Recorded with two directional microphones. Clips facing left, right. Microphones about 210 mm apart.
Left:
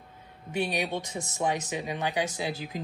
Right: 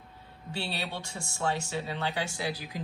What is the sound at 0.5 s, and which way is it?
Speech, 15° left (ahead or behind).